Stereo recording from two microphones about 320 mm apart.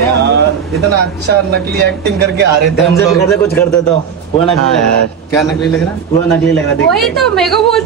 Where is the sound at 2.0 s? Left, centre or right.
Right.